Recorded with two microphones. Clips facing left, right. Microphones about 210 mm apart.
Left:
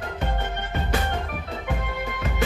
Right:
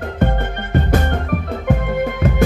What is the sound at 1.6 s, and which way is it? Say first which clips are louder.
Music: right 12 dB; 50° right (ahead or behind).